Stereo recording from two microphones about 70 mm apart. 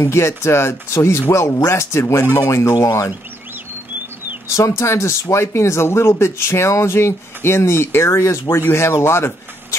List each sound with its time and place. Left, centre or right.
0.0 s speech: left
4.5 s a man's voice: left